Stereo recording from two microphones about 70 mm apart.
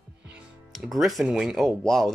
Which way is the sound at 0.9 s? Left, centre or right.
Centre.